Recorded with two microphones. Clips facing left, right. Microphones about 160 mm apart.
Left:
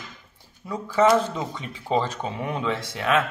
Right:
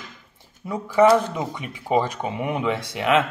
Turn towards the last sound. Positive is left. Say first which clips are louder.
# right 3 dB
turn(degrees=-20)  # may be behind; listen again after turning